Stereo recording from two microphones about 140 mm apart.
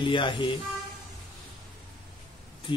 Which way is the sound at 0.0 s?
35° left (ahead or behind).